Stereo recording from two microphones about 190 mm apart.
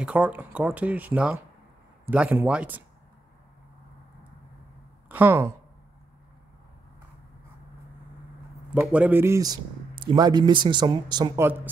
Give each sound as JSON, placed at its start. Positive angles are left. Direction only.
{"t": 0.0, "sound": "speech", "side_deg": -5}
{"t": 5.0, "sound": "speech", "side_deg": -10}
{"t": 8.6, "sound": "speech", "side_deg": -10}